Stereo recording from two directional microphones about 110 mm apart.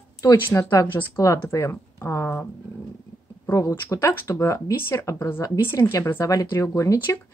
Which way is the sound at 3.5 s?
25° left (ahead or behind).